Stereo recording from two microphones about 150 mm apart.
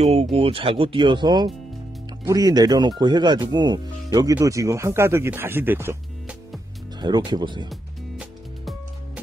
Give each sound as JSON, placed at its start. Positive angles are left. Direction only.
{"t": 0.0, "sound": "speech", "side_deg": -45}
{"t": 7.0, "sound": "speech", "side_deg": -30}
{"t": 7.7, "sound": "music", "side_deg": -5}